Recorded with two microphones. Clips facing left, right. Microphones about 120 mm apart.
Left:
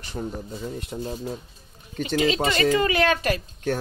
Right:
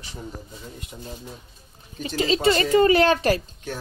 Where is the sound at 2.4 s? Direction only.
35° right (ahead or behind).